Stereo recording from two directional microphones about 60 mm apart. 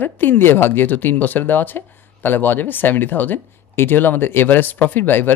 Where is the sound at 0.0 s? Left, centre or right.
Left.